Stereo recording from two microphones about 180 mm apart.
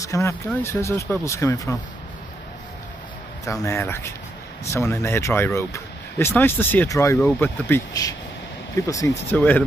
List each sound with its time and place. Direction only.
0.0 s speech: 15° left (ahead or behind)
3.4 s speech: 15° left (ahead or behind)